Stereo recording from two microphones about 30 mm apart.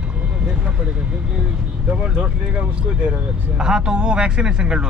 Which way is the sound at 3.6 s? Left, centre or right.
Right.